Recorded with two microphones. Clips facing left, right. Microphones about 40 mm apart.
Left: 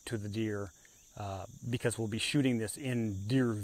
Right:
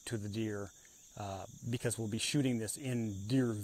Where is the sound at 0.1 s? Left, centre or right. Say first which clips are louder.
Left 3 dB; centre.